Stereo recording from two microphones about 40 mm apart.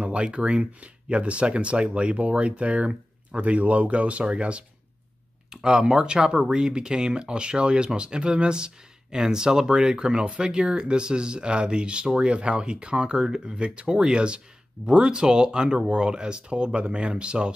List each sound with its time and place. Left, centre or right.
0.0 s speech: right
5.5 s speech: centre